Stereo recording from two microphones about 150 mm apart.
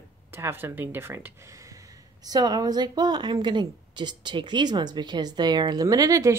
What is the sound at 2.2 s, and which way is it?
A woman's voice, 25° right (ahead or behind).